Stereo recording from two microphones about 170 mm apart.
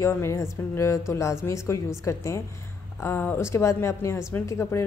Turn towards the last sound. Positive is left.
turn(degrees=15)  # may be behind; listen again after turning